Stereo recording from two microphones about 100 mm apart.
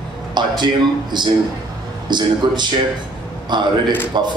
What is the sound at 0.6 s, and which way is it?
A man's voice, 50° right (ahead or behind).